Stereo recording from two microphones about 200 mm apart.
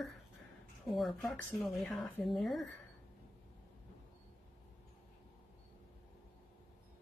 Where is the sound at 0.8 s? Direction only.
Centre (ahead or behind).